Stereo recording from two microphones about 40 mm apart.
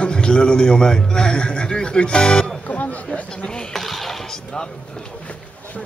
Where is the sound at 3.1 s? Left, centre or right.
Left.